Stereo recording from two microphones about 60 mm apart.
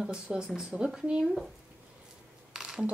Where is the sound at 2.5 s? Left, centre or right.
Centre.